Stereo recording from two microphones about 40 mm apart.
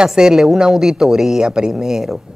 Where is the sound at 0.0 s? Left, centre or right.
Centre.